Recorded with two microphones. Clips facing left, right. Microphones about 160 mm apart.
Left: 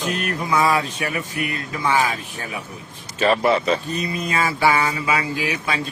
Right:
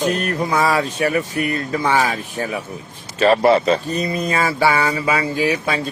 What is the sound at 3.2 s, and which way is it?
Speech, 35° right (ahead or behind).